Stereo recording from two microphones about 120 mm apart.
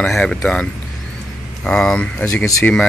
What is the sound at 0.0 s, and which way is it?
Speech, 5° left (ahead or behind).